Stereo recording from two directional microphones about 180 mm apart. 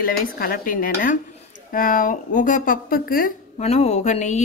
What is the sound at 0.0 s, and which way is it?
Speech, 55° left (ahead or behind).